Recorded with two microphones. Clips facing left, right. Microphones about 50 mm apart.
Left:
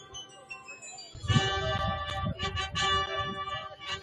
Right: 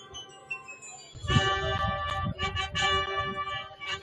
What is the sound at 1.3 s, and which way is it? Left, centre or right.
Music, right.